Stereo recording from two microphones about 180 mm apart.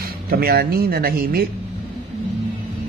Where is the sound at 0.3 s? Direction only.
60° right (ahead or behind).